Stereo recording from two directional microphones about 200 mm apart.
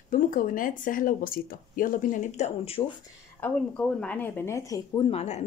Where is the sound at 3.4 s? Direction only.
5° left (ahead or behind).